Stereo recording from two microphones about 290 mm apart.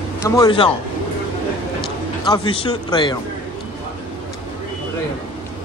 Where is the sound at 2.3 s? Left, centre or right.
Centre.